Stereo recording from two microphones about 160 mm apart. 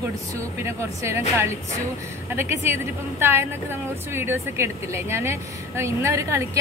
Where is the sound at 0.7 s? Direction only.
15° right (ahead or behind).